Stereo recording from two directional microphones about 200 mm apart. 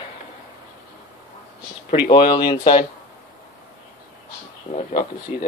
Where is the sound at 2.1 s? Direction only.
25° left (ahead or behind).